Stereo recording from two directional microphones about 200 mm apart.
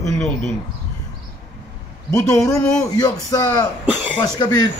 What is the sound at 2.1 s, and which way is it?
Speech, 15° left (ahead or behind).